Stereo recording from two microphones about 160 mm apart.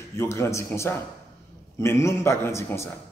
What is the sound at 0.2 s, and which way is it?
Speech, 15° left (ahead or behind).